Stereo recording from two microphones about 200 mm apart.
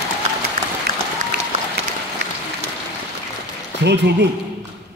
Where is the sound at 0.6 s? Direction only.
45° right (ahead or behind).